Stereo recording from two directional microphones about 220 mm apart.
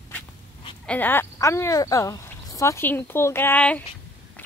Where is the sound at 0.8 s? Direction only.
10° left (ahead or behind).